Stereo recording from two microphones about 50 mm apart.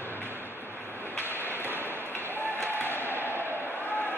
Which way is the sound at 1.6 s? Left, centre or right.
Right.